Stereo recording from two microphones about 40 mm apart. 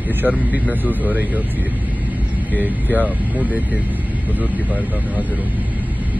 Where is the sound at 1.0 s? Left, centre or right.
Right.